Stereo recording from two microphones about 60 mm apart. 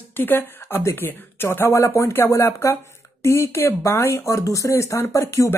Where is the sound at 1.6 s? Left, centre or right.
Left.